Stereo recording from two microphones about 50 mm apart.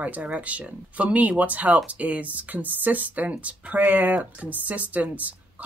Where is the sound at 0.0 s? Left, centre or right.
Right.